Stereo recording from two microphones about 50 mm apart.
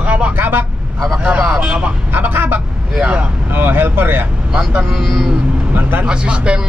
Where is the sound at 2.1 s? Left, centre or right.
Right.